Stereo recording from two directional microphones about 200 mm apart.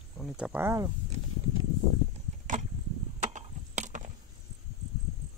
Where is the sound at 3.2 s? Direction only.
35° right (ahead or behind).